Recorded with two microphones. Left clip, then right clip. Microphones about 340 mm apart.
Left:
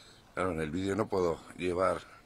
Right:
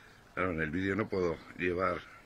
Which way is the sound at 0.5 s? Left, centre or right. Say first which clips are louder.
Even; left.